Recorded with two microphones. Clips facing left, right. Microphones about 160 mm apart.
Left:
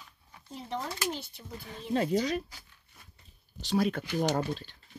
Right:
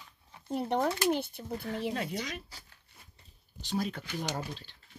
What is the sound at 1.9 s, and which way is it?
Speech, 35° left (ahead or behind).